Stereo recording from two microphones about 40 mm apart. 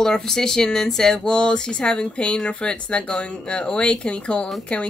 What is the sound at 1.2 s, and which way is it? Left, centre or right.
Speech, left.